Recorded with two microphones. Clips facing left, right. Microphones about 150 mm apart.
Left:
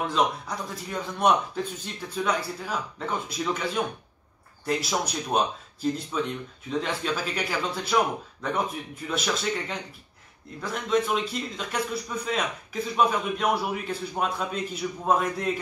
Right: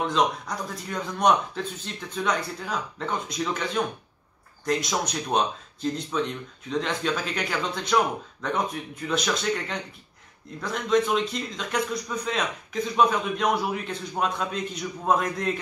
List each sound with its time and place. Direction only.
0.0 s a man's voice: 5° left (ahead or behind)